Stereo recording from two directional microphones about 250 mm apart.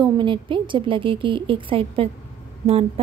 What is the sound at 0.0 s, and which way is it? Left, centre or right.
A woman's voice, centre.